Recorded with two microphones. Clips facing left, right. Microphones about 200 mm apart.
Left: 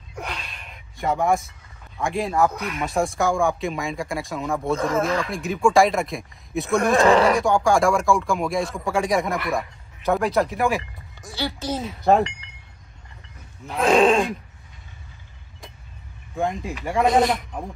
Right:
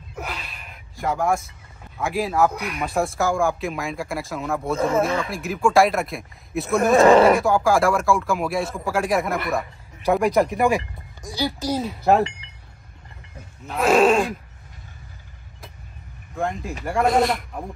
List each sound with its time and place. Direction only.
0.1 s a sound: 5° right (ahead or behind)
2.0 s speech: 5° right (ahead or behind)
10.5 s speech: 15° right (ahead or behind)
11.2 s speech: centre (ahead or behind)
13.7 s speech: centre (ahead or behind)
16.3 s speech: centre (ahead or behind)